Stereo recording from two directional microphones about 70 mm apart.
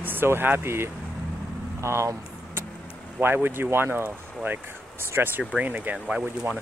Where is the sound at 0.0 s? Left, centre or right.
Right.